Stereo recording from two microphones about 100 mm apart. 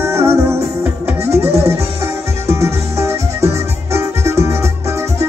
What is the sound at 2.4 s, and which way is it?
Music, 30° right (ahead or behind).